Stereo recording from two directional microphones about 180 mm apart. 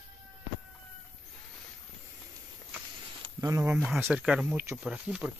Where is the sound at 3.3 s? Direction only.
20° right (ahead or behind).